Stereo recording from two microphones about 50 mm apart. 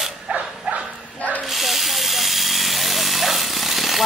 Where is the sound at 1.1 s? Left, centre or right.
Left.